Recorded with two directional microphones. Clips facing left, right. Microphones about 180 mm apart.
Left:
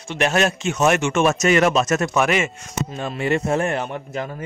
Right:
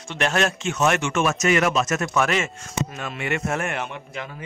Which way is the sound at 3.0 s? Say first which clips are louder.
Left 6 dB; 30° left (ahead or behind).